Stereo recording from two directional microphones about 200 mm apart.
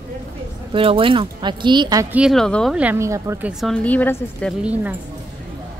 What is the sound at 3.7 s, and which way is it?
Speech, 5° left (ahead or behind).